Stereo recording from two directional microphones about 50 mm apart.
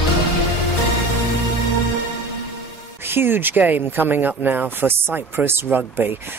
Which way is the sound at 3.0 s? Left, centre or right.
Right.